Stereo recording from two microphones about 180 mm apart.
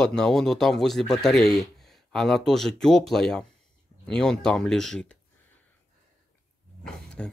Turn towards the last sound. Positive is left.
turn(degrees=5)  # may be behind; listen again after turning